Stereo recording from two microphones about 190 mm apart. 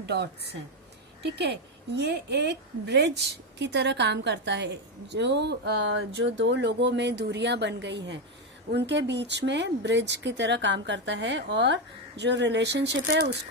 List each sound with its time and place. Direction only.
0.1 s a woman's voice: 60° right (ahead or behind)